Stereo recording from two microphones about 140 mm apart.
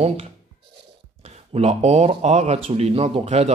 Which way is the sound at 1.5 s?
50° right (ahead or behind).